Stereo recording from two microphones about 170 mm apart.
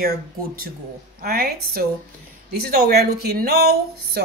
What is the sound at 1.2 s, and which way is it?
Speech, 60° right (ahead or behind).